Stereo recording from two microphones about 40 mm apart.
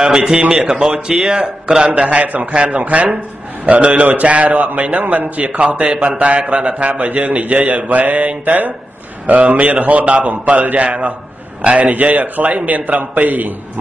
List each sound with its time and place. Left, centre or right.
0.0 s a man's voice: centre
2.0 s a man's voice: right
11.9 s speech: right